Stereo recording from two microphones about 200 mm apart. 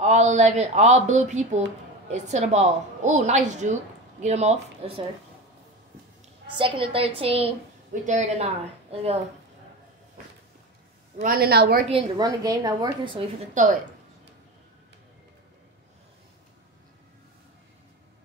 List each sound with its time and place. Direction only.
0.0 s a woman's voice: 35° right (ahead or behind)
6.5 s a woman's voice: 25° right (ahead or behind)
11.1 s a woman's voice: 50° right (ahead or behind)
11.9 s a woman's voice: 20° right (ahead or behind)
13.6 s a woman's voice: 40° right (ahead or behind)